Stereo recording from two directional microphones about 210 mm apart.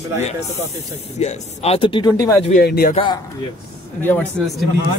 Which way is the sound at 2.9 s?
20° left (ahead or behind).